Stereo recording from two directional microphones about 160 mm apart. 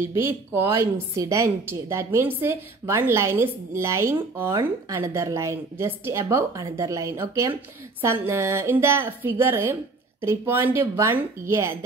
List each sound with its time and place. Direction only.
0.0 s a woman's voice: 15° right (ahead or behind)